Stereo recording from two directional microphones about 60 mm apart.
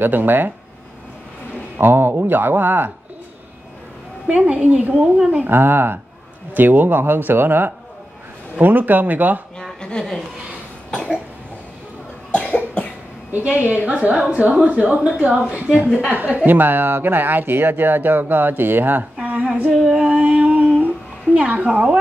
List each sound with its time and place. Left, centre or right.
0.0 s speech: right
1.8 s speech: right
4.3 s a woman's voice: right
5.1 s a woman's voice: centre
5.5 s speech: right
9.6 s a sound: centre
12.4 s cough: left
13.3 s a woman's voice: right
19.8 s a sound: centre
21.5 s a woman's voice: right